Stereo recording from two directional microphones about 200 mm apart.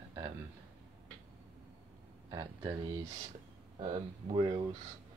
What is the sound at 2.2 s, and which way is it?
Speech, 20° right (ahead or behind).